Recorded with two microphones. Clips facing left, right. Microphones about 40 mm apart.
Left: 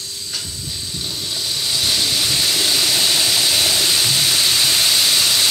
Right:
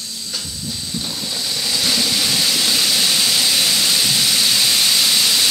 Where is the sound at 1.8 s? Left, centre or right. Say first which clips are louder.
Right 1 dB; right.